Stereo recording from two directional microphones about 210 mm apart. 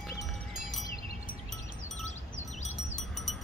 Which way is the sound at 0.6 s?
Centre (ahead or behind).